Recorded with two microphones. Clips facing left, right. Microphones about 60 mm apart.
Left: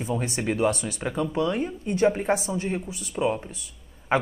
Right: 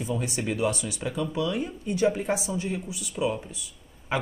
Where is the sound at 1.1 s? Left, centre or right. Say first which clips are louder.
Left 3 dB; left.